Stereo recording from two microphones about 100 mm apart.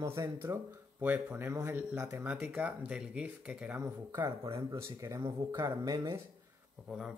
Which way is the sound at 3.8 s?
30° right (ahead or behind).